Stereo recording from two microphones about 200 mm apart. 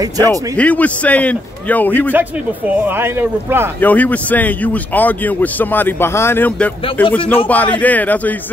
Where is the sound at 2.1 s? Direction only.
10° right (ahead or behind).